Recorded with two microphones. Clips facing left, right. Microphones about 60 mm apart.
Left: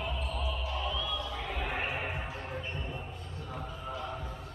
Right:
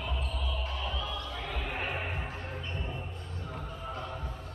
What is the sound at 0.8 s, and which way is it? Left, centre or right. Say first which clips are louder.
Music: left 2 dB; right.